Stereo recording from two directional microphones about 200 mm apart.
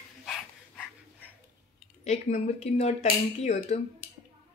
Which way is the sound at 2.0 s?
35° left (ahead or behind).